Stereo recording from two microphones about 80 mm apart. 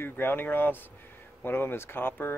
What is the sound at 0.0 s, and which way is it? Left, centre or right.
Speech, left.